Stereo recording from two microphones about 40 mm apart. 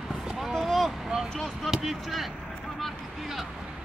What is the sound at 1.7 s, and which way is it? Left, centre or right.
Speech, centre.